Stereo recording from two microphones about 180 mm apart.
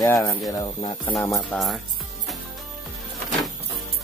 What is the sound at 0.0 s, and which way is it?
Speech, 15° left (ahead or behind).